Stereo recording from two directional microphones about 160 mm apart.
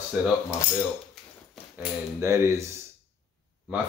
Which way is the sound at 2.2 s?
20° right (ahead or behind).